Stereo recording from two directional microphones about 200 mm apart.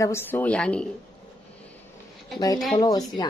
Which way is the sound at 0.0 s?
10° left (ahead or behind).